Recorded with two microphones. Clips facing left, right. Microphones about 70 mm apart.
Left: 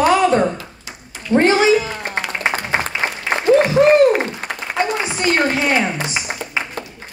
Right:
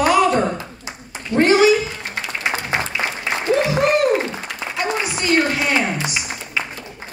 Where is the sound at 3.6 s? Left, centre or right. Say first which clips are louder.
Left 5 dB; left.